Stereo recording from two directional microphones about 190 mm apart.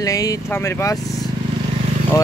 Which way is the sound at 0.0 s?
20° left (ahead or behind).